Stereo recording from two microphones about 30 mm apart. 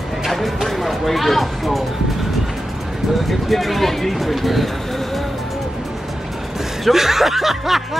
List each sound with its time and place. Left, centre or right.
0.3 s speech: centre
3.3 s speech: centre
6.8 s speech: centre